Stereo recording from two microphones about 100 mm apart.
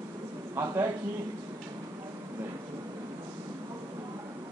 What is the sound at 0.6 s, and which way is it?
Speech, 25° right (ahead or behind).